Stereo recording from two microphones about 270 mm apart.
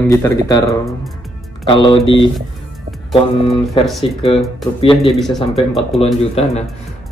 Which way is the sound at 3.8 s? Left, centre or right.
Centre.